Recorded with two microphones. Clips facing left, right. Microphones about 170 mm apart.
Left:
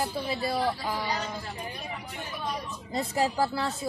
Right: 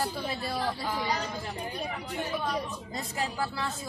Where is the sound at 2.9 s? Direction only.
35° left (ahead or behind).